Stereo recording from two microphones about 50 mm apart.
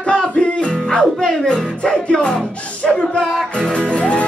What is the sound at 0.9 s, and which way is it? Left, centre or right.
Music, centre.